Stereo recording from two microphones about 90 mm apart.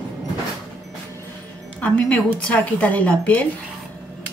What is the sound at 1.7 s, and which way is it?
Speech, 15° left (ahead or behind).